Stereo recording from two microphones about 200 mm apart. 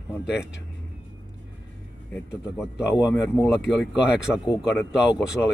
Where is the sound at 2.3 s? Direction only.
5° right (ahead or behind).